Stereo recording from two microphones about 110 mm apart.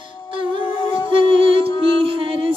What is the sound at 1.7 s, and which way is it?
Music, 35° left (ahead or behind).